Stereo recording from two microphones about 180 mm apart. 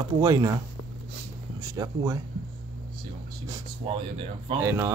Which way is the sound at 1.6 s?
20° right (ahead or behind).